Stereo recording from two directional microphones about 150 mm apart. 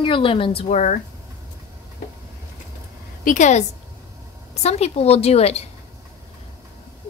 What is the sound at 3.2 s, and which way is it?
Speech, 55° left (ahead or behind).